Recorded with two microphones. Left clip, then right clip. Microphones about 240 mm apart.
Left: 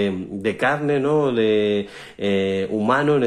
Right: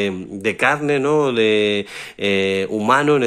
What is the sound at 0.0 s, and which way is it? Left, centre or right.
Speech, right.